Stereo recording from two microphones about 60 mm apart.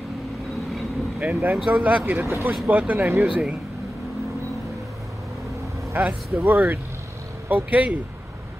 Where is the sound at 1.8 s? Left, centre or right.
Right.